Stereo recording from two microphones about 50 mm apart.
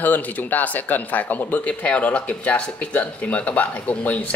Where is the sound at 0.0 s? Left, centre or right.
Left.